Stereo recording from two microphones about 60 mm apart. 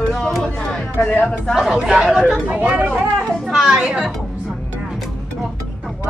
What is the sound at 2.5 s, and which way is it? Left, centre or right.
Speech, right.